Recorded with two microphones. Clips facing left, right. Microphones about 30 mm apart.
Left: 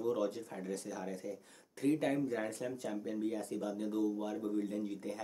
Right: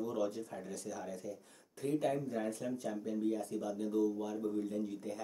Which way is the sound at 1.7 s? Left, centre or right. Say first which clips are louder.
Left 2 dB; left.